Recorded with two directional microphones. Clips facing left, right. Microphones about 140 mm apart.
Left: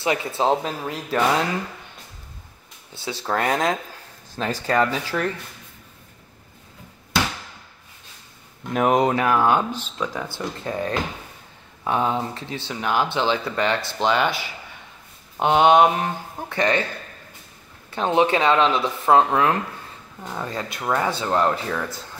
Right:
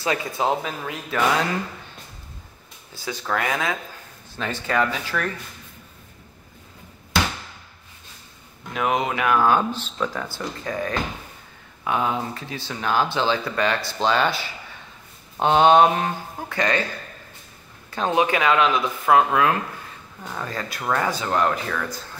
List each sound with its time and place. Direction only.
0.0 s speech: 25° left (ahead or behind)
2.9 s speech: 30° left (ahead or behind)
8.7 s speech: 40° left (ahead or behind); by 16.8 s 25° left (ahead or behind)
17.9 s speech: 25° left (ahead or behind)
21.1 s speech: 30° left (ahead or behind)